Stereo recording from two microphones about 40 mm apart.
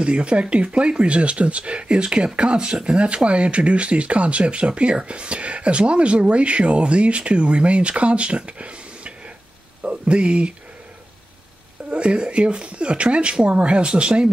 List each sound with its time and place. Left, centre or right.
0.0 s speech: right
3.3 s speech: right
11.9 s speech: right